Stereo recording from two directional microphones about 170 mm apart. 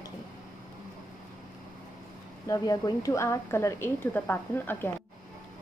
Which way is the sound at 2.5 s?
20° left (ahead or behind).